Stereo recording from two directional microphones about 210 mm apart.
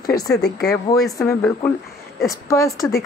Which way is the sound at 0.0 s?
15° left (ahead or behind).